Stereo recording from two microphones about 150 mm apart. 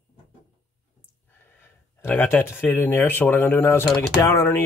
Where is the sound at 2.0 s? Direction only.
15° left (ahead or behind).